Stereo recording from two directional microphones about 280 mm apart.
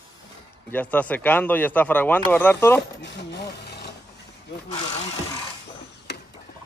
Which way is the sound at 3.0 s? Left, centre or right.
Left.